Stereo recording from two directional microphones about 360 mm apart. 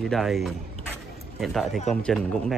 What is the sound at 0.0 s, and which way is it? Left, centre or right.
Speech, centre.